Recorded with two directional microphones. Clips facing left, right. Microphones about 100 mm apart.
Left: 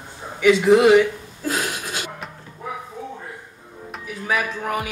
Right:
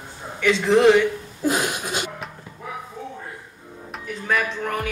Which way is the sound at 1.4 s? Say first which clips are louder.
Right 3 dB; 20° right (ahead or behind).